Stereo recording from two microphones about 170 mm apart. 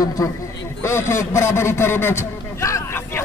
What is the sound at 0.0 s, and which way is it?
A man's voice, 20° left (ahead or behind).